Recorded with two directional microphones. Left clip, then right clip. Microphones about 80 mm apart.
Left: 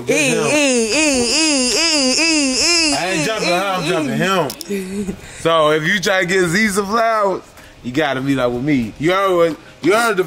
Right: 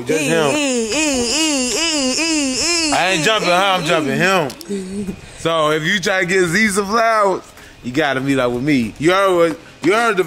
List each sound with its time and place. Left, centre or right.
0.1 s speech: centre
0.5 s wail: centre
3.6 s speech: centre